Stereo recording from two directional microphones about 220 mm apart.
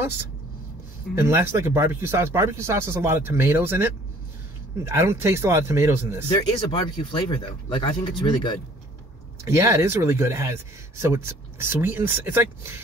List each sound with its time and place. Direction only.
1.1 s speech: 10° right (ahead or behind)
6.2 s speech: 25° left (ahead or behind)
9.4 s speech: 10° right (ahead or behind)